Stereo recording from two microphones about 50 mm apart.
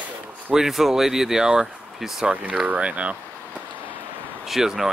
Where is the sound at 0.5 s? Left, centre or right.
Centre.